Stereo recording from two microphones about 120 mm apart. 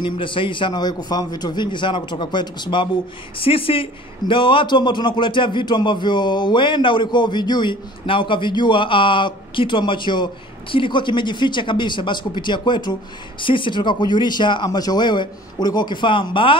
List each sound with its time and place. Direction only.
0.0 s a man's voice: 45° left (ahead or behind)